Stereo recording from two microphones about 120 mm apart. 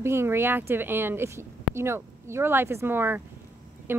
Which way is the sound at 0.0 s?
20° right (ahead or behind).